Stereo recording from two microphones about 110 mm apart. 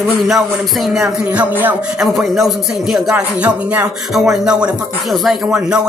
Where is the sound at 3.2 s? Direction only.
15° right (ahead or behind).